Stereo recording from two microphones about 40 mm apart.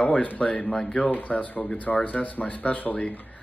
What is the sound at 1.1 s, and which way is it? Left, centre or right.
Speech, left.